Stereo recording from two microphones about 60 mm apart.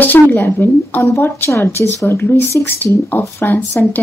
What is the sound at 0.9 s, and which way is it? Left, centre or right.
Speech, left.